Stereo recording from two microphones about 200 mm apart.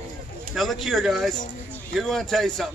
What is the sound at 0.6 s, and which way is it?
Speech, centre (ahead or behind).